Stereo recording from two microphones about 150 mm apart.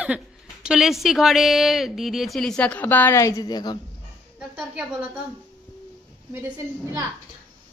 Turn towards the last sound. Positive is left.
turn(degrees=-25)  # may be behind; listen again after turning